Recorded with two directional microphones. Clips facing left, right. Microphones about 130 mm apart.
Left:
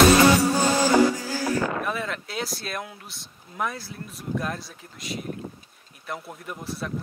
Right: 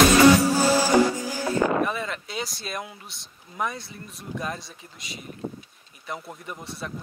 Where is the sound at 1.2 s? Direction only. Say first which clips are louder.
Right 1 dB; 15° right (ahead or behind).